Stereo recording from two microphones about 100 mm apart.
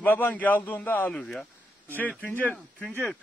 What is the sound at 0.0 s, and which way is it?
Speech, 20° left (ahead or behind).